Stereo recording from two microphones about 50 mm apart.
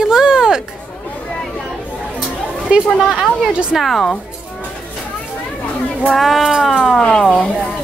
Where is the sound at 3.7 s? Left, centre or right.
Centre.